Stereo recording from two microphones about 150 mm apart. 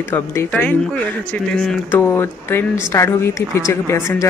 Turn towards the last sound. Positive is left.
turn(degrees=15)  # may be behind; listen again after turning